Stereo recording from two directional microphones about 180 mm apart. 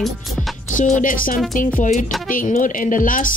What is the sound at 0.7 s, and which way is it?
Speech, 45° left (ahead or behind).